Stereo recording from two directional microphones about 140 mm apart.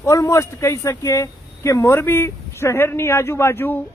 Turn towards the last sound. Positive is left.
turn(degrees=15)  # may be behind; listen again after turning